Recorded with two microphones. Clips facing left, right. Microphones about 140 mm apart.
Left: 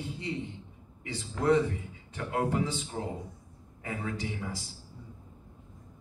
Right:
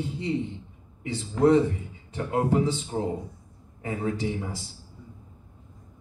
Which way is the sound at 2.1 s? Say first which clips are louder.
Right 6 dB; 30° right (ahead or behind).